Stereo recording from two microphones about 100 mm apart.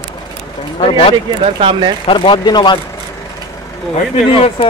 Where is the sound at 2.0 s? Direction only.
60° left (ahead or behind).